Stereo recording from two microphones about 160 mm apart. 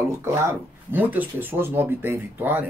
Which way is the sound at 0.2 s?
15° right (ahead or behind).